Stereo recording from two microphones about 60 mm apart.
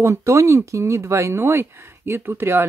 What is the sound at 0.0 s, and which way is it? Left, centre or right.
Speech, right.